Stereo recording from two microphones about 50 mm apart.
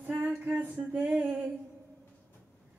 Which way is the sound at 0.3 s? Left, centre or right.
Right.